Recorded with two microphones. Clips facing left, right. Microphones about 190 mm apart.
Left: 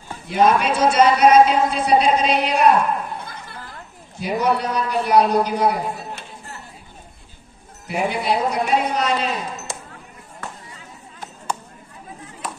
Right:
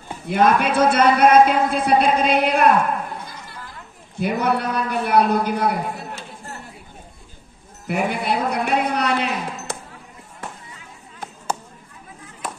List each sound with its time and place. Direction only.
0.3 s a man's voice: 55° right (ahead or behind)
4.2 s a man's voice: 55° right (ahead or behind)
7.9 s a man's voice: 55° right (ahead or behind)